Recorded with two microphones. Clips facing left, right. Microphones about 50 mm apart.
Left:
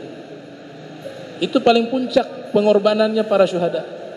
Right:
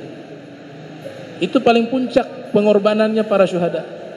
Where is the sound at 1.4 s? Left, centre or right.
Right.